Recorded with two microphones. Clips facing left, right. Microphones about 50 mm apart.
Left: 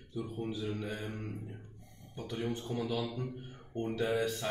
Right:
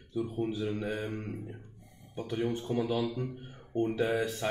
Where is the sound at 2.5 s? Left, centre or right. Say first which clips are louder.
Right 5 dB; right.